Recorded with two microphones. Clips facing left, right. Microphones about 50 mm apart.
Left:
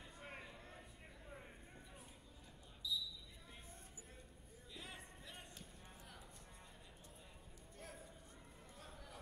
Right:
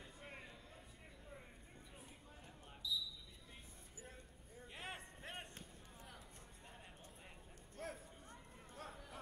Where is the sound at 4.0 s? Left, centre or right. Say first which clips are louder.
Right 3 dB; right.